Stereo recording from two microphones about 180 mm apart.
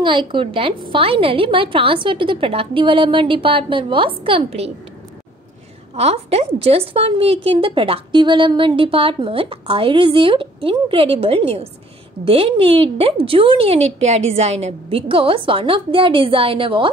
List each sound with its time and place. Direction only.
0.0 s a woman's voice: 25° right (ahead or behind)
5.9 s a woman's voice: 35° right (ahead or behind)